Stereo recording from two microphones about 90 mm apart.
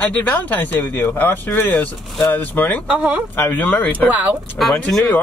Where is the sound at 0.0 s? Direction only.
20° left (ahead or behind).